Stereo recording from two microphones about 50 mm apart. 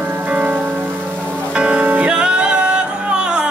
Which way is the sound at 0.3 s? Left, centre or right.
Right.